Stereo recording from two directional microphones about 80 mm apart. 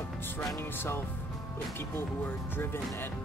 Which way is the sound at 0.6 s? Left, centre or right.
Left.